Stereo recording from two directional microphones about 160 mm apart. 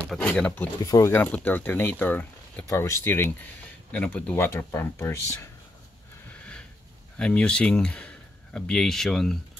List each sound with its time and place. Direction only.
0.0 s speech: 5° left (ahead or behind)
0.8 s speech: 20° left (ahead or behind)
7.2 s speech: 5° left (ahead or behind)